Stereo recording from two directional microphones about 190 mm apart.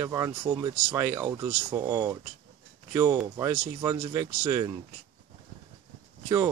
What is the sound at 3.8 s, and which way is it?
Speech, 25° right (ahead or behind).